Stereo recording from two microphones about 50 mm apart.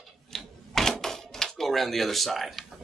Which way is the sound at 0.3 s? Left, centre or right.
Centre.